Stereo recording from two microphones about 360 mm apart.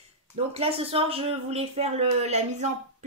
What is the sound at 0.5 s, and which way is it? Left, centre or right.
A woman's voice, centre.